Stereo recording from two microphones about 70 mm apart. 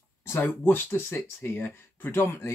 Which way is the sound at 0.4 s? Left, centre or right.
Left.